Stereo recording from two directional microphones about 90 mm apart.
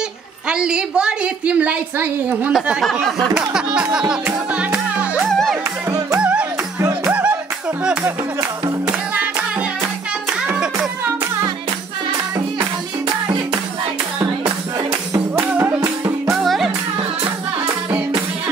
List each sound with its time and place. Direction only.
0.5 s a woman's voice: 10° right (ahead or behind)
2.5 s speech: centre (ahead or behind)
3.3 s a woman's voice: 10° right (ahead or behind)
4.6 s music: 15° right (ahead or behind)
5.3 s music: 5° left (ahead or behind)
5.9 s music: 35° right (ahead or behind)
7.1 s music: 15° right (ahead or behind)
8.4 s speech: 45° right (ahead or behind)
9.1 s music: 20° right (ahead or behind)
15.3 s music: 20° right (ahead or behind)
16.3 s music: centre (ahead or behind)